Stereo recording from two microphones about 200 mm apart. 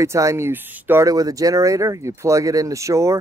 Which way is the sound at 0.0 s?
15° right (ahead or behind).